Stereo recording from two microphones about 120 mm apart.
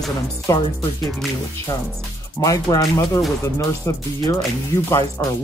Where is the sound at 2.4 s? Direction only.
30° left (ahead or behind).